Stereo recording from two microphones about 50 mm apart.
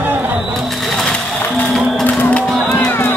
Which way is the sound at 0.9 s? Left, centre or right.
Centre.